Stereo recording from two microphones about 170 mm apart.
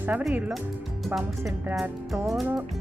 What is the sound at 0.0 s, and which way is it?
Speech, 10° right (ahead or behind).